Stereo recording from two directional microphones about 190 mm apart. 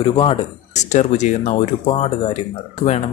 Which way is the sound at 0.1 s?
30° left (ahead or behind).